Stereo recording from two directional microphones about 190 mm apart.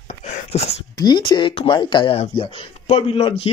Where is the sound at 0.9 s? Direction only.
20° left (ahead or behind).